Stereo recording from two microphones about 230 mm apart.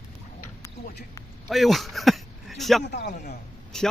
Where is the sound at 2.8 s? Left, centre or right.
Left.